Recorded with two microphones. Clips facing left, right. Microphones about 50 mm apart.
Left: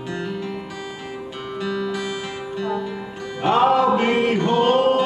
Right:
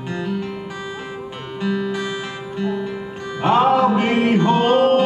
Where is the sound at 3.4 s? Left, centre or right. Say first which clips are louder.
Right 1 dB; centre.